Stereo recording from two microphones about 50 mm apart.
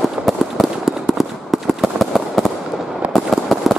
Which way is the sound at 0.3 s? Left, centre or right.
Centre.